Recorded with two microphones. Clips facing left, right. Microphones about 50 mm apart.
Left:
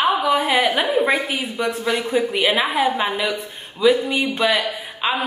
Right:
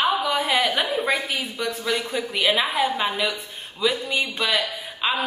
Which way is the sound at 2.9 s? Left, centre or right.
Centre.